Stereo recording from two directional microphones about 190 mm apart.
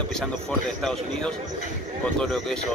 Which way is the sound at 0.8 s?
5° left (ahead or behind).